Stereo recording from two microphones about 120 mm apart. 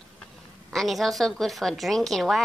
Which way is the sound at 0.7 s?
Centre (ahead or behind).